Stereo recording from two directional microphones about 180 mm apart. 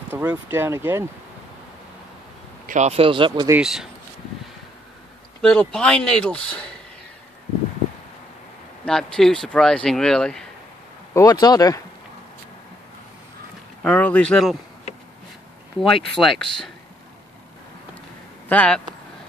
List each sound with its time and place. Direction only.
0.1 s speech: 10° right (ahead or behind)
2.6 s speech: 40° right (ahead or behind)
3.4 s speech: 5° right (ahead or behind)
5.4 s speech: 5° left (ahead or behind)
8.8 s speech: 5° left (ahead or behind)
11.1 s speech: 20° left (ahead or behind)
13.8 s speech: 10° left (ahead or behind)
16.2 s speech: centre (ahead or behind)
18.5 s speech: 5° left (ahead or behind)